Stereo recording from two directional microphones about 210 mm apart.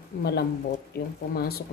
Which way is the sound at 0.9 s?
45° left (ahead or behind).